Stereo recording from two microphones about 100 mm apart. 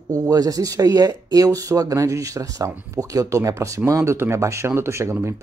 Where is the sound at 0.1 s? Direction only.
40° right (ahead or behind).